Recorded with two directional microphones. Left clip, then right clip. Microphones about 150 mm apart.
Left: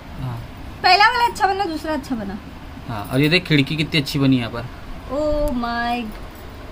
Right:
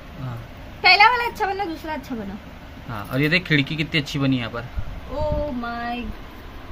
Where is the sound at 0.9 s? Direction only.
40° right (ahead or behind).